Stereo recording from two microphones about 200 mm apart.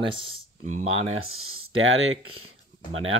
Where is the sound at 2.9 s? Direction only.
30° right (ahead or behind).